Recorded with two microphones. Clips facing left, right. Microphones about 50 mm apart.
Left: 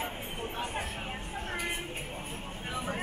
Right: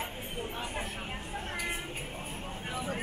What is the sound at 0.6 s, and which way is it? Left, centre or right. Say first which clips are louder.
Vehicle: left 2 dB; centre.